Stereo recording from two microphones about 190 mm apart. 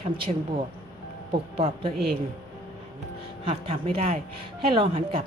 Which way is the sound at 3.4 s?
30° right (ahead or behind).